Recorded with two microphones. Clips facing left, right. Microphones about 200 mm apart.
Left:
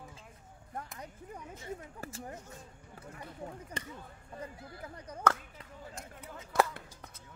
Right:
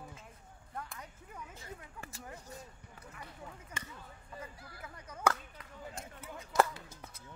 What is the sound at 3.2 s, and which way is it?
Speech, 35° left (ahead or behind).